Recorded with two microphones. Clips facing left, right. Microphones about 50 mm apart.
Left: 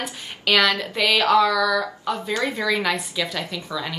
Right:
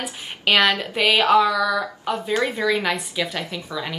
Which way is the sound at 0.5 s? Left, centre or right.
Centre.